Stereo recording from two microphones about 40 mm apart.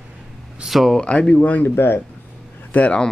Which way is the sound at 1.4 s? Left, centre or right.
Left.